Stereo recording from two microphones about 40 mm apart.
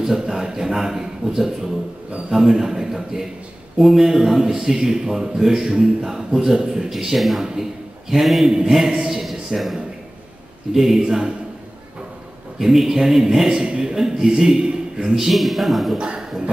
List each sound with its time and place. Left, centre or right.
0.0 s a man's voice: centre
12.5 s a man's voice: centre
15.3 s a man's voice: centre